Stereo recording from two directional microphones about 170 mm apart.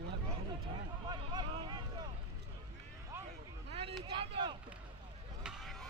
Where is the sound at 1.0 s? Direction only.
25° right (ahead or behind).